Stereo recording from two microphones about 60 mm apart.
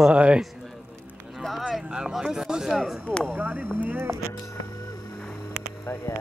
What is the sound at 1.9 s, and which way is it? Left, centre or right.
Speech, centre.